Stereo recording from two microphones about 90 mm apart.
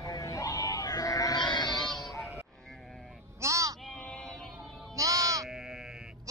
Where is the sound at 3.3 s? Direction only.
35° right (ahead or behind).